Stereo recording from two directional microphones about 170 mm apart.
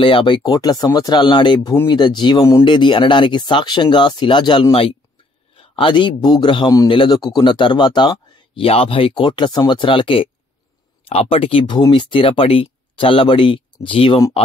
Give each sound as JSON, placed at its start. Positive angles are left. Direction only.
{"t": 0.0, "sound": "speech", "side_deg": 30}